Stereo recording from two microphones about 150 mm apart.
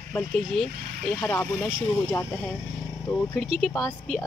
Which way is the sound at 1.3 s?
15° left (ahead or behind).